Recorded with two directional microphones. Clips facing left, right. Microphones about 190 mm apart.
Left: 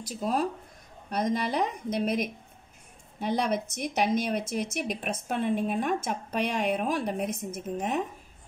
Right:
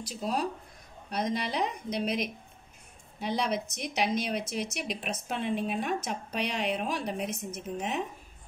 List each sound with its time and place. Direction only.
0.0 s a woman's voice: 50° left (ahead or behind)